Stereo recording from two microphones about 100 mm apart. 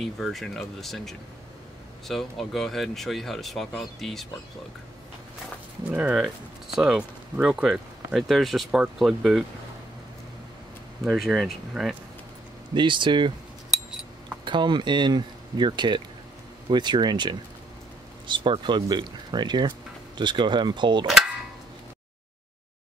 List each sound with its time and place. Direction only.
0.0 s speech: centre (ahead or behind)
5.9 s speech: 15° right (ahead or behind)
11.1 s speech: centre (ahead or behind)
12.7 s speech: 55° right (ahead or behind)
13.7 s cutlery: 5° right (ahead or behind)
14.4 s speech: 50° right (ahead or behind)